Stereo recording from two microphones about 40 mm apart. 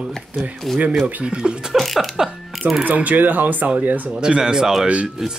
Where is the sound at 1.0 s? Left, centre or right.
Right.